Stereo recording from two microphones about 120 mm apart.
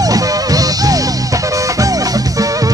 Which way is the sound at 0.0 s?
30° right (ahead or behind).